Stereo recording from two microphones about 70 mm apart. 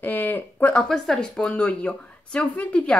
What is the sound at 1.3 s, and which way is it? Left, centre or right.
Speech, centre.